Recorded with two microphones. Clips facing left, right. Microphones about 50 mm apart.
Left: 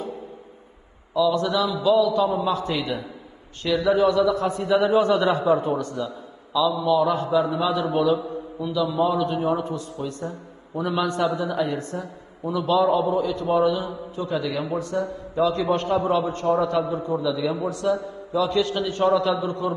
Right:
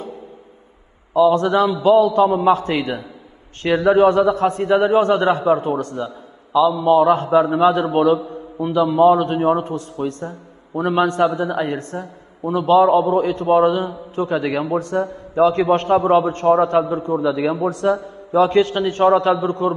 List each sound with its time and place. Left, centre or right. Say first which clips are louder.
1.1 s a man's voice: right 7 dB; right